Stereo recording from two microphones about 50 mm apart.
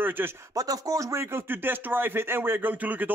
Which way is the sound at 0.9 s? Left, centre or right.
Right.